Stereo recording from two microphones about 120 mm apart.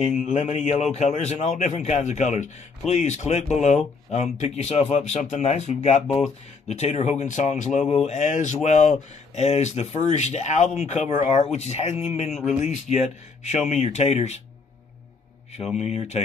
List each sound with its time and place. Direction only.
0.4 s speech: 65° left (ahead or behind); by 2.5 s 85° left
2.9 s speech: 70° left (ahead or behind); by 7.8 s 90° left
7.9 s speech: 65° left (ahead or behind)
12.3 s speech: centre (ahead or behind)
12.6 s speech: 70° left (ahead or behind)
15.5 s speech: 65° left (ahead or behind)